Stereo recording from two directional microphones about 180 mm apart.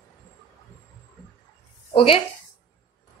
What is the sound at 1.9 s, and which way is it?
Speech, 30° left (ahead or behind).